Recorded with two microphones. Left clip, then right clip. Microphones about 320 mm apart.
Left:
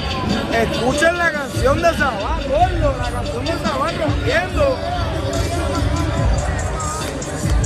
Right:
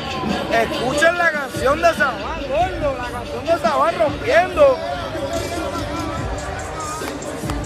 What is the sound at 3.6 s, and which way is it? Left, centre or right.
Speech, centre.